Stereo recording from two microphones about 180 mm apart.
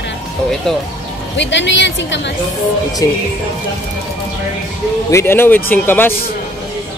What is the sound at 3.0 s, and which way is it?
Speech, 20° left (ahead or behind).